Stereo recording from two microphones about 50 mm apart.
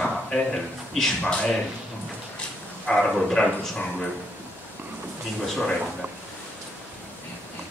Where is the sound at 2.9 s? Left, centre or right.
Left.